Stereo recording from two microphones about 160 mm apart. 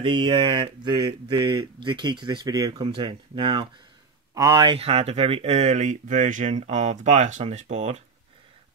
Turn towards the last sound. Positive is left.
turn(degrees=-45)  # may be behind; listen again after turning